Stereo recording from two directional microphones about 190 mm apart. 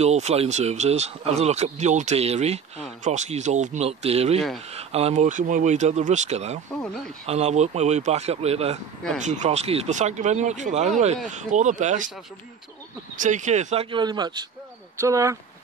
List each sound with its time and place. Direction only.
0.0 s speech: 35° right (ahead or behind)
13.1 s speech: 40° right (ahead or behind); by 15.3 s 15° right (ahead or behind)